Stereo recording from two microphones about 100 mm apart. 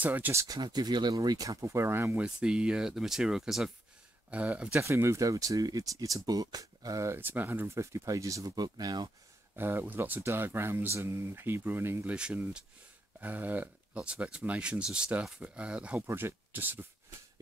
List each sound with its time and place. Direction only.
0.0 s speech: 15° right (ahead or behind)
0.3 s speech: 30° right (ahead or behind)
0.6 s speech: 45° right (ahead or behind); by 2.2 s 20° right (ahead or behind)
2.2 s speech: 10° right (ahead or behind)
4.3 s speech: 15° right (ahead or behind)
4.7 s speech: 30° right (ahead or behind)
9.6 s speech: 20° right (ahead or behind)
16.1 s speech: 25° right (ahead or behind)